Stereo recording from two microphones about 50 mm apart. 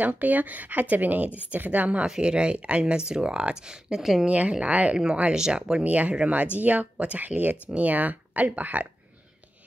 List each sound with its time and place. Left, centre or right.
0.0 s speech: right
2.0 s speech: centre
4.3 s speech: right
4.9 s speech: centre
5.9 s speech: right